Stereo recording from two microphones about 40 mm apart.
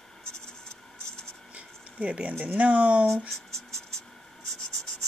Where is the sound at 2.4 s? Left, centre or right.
Right.